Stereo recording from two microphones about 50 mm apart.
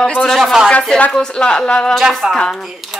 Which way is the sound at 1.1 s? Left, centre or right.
Centre.